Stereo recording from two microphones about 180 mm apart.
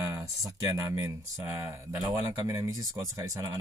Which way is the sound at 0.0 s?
15° right (ahead or behind).